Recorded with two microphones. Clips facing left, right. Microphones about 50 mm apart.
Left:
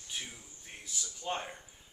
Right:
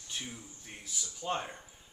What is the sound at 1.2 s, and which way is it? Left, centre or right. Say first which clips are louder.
Speech: right 2 dB; centre.